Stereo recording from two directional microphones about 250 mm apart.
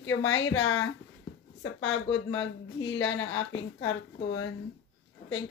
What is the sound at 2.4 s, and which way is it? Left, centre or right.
Speech, left.